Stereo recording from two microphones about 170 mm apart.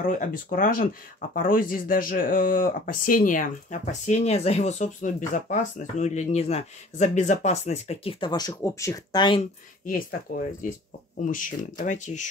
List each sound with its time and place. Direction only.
0.0 s speech: 50° left (ahead or behind); by 9.4 s 25° left (ahead or behind)
9.8 s speech: 55° left (ahead or behind)